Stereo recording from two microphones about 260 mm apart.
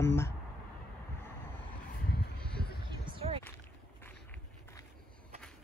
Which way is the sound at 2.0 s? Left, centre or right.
Left.